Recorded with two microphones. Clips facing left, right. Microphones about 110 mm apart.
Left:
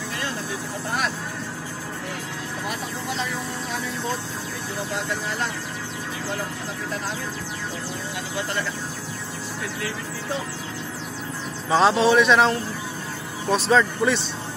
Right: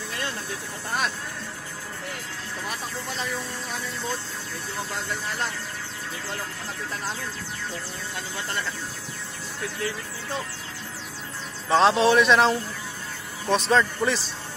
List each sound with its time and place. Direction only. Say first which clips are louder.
11.7 s a man's voice: left 1 dB; centre (ahead or behind)